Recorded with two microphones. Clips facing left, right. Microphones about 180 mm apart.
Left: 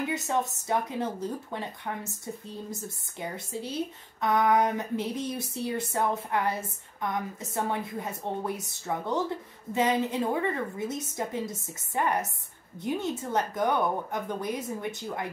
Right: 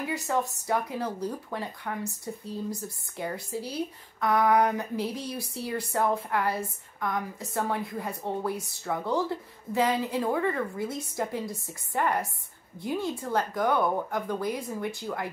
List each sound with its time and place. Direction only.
0.1 s speech: 20° left (ahead or behind)
2.7 s speech: 20° left (ahead or behind)